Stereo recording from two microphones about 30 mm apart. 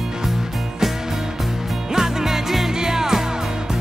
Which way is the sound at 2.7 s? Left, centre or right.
Centre.